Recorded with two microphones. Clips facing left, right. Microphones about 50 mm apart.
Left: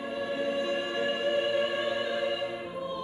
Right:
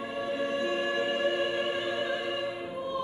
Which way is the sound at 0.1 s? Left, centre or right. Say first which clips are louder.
Left 1 dB; right.